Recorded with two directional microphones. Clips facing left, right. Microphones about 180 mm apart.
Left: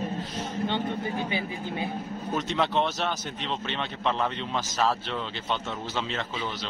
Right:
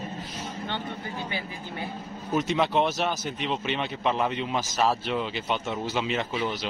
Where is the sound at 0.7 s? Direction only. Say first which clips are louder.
Left 5 dB; 15° left (ahead or behind).